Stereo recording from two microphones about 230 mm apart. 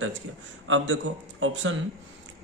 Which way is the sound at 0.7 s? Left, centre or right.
Right.